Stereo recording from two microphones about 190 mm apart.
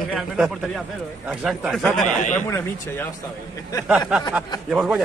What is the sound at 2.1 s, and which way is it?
Speech, 40° left (ahead or behind).